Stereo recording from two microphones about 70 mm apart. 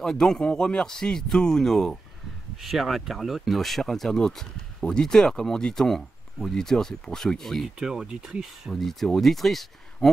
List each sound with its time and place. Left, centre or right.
0.0 s speech: centre
7.8 s speech: centre
8.7 s speech: centre